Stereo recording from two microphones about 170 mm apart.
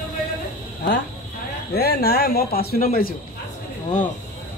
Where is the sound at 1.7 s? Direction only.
70° left (ahead or behind).